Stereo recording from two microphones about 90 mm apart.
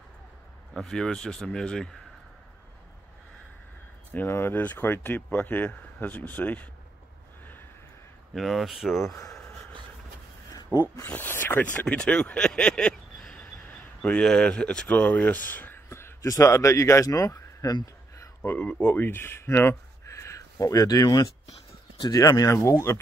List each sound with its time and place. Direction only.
0.7 s speech: 5° left (ahead or behind)
4.1 s speech: 25° left (ahead or behind)
8.4 s speech: centre (ahead or behind)
10.5 s a sound: 45° left (ahead or behind)
11.0 s speech: 20° left (ahead or behind); by 17.7 s 35° left (ahead or behind)
18.1 s a sound: 35° left (ahead or behind)
18.5 s speech: 10° left (ahead or behind); by 22.9 s 30° left (ahead or behind)